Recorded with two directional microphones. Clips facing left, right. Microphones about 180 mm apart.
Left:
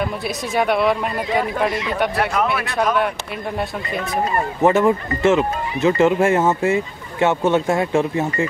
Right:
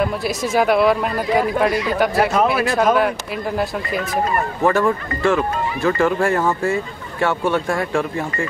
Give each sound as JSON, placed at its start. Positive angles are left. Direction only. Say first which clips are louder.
{"t": 0.6, "sound": "speech", "louder": "right 2 dB", "side_deg": 0}
{"t": 4.6, "sound": "speech", "louder": "left 3 dB", "side_deg": 20}